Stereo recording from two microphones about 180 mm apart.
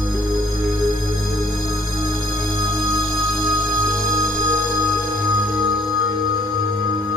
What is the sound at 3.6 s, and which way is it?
Music, 20° right (ahead or behind).